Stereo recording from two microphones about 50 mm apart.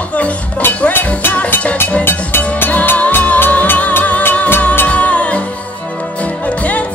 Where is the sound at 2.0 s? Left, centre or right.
Left.